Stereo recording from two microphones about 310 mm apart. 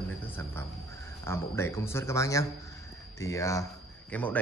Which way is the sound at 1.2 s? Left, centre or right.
Centre.